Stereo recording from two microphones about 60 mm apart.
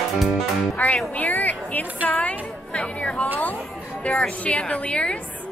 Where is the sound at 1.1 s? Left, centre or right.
Left.